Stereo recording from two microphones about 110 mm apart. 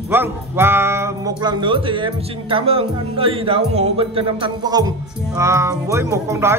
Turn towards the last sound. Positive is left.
turn(degrees=-25)  # may be behind; listen again after turning